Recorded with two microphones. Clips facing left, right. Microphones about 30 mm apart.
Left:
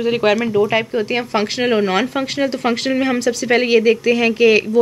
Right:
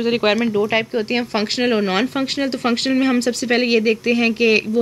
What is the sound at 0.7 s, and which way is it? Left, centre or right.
Speech, right.